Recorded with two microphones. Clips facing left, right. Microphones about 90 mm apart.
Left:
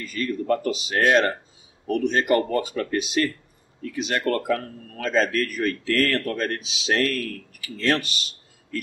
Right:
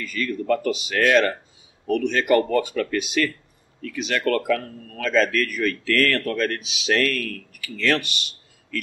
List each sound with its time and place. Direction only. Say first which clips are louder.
0.0 s speech: even; 35° left (ahead or behind)